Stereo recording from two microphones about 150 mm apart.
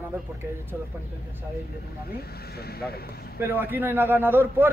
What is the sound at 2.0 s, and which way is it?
Speech, 90° left.